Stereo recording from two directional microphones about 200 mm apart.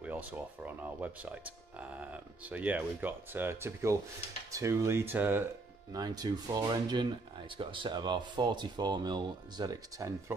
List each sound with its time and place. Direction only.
0.0 s speech: 10° right (ahead or behind)